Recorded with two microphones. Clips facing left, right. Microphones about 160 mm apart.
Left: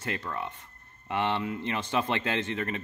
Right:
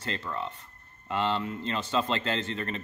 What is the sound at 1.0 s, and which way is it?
Speech, 15° left (ahead or behind).